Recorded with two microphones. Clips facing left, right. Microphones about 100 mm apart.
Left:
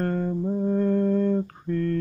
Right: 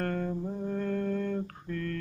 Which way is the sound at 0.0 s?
25° left (ahead or behind).